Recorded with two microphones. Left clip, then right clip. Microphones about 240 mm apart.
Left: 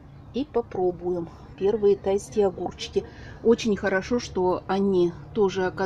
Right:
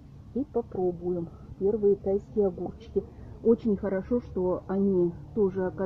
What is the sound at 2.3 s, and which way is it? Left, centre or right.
Speech, left.